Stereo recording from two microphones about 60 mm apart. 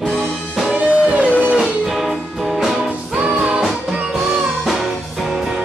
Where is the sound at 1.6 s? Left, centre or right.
Centre.